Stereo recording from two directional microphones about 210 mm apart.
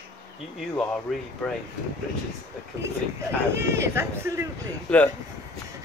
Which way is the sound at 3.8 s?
15° right (ahead or behind).